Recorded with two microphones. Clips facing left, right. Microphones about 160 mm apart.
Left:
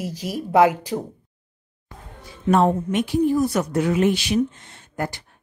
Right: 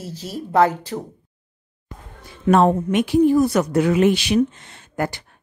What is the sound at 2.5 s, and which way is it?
Speech, 70° right (ahead or behind).